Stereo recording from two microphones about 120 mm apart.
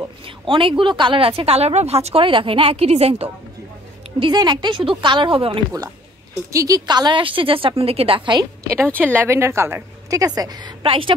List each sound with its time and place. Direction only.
0.2 s a woman's voice: 45° right (ahead or behind)
4.2 s a woman's voice: 40° right (ahead or behind)
6.5 s a woman's voice: 30° right (ahead or behind); by 8.4 s 50° right (ahead or behind)
8.7 s a woman's voice: 15° right (ahead or behind); by 10.7 s 35° right (ahead or behind)
10.8 s a woman's voice: 45° right (ahead or behind)